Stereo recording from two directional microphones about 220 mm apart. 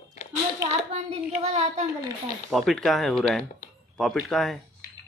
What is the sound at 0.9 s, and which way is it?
Child singing, 30° right (ahead or behind).